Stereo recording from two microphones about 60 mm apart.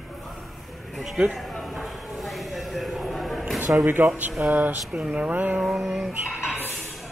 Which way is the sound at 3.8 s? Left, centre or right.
Right.